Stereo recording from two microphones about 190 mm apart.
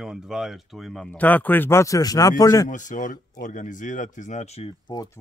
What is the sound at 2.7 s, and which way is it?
Speech, 40° left (ahead or behind).